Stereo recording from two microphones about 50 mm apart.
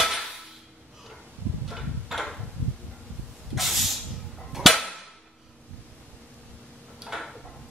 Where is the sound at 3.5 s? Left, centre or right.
Centre.